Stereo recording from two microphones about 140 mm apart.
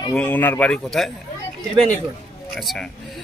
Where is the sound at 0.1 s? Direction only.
10° left (ahead or behind).